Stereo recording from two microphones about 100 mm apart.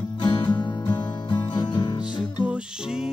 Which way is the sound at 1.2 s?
50° left (ahead or behind).